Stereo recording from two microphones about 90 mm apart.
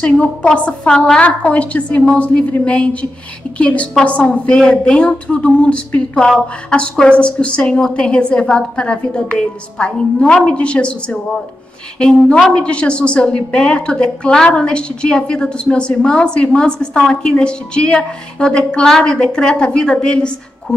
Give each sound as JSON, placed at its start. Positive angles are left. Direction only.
{"t": 0.0, "sound": "a woman's voice", "side_deg": 10}